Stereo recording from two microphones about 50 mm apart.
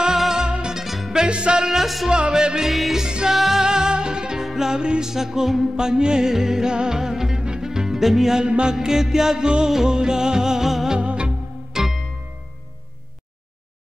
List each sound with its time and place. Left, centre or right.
0.0 s music: centre
0.8 s music: centre
1.2 s music: centre
2.0 s music: centre
8.5 s music: right
8.7 s music: centre
11.0 s music: right